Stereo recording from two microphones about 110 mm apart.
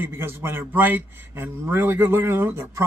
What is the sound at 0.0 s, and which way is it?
A man's voice, 20° right (ahead or behind).